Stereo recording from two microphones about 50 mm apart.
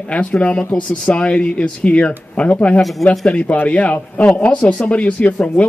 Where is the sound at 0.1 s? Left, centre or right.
Left.